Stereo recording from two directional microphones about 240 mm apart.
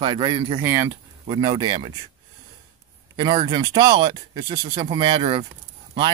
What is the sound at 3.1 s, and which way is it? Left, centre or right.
Speech, centre.